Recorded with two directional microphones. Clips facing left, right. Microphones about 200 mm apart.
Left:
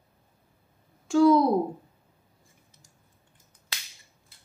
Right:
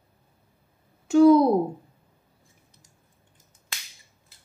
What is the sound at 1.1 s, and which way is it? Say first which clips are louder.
Speech: right 4 dB; 25° right (ahead or behind).